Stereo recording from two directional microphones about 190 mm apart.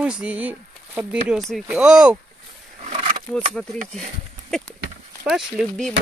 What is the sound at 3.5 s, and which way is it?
Speech, centre (ahead or behind).